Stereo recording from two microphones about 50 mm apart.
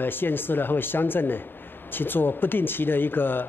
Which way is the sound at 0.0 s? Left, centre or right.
Left.